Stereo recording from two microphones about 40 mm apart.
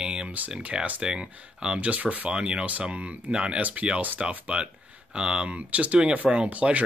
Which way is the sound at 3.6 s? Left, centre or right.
Right.